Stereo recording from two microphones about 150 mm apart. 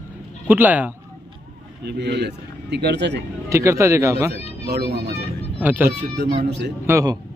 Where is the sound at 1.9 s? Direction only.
90° right.